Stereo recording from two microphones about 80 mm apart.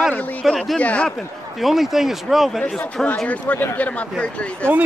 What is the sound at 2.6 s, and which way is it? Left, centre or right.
Speech, centre.